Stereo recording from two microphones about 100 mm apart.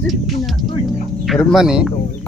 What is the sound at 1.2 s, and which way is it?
Speech, centre (ahead or behind).